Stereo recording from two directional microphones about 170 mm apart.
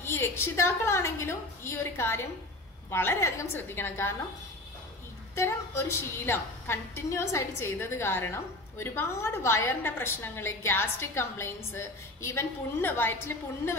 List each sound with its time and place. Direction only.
0.0 s a woman's voice: 15° left (ahead or behind)
5.3 s a woman's voice: 15° left (ahead or behind)